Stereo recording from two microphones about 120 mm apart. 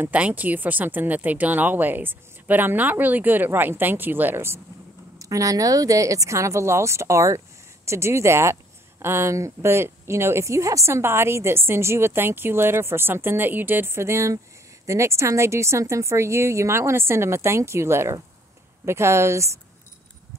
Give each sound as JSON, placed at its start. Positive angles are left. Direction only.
{"t": 0.0, "sound": "a woman's voice", "side_deg": -15}